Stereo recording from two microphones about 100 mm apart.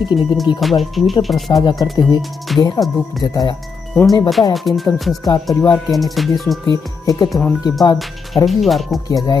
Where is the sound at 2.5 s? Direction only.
Centre (ahead or behind).